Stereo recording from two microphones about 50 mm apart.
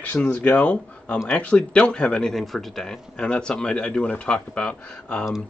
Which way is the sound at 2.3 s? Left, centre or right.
Centre.